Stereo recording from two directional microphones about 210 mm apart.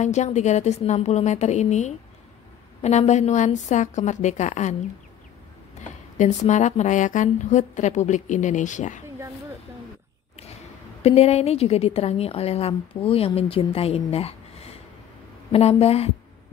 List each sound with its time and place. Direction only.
0.0 s a woman's voice: 35° left (ahead or behind)
6.1 s a woman's voice: 35° left (ahead or behind)
11.0 s a woman's voice: 30° left (ahead or behind)